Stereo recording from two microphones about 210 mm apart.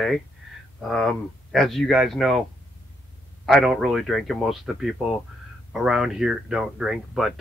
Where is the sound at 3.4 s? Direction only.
Centre (ahead or behind).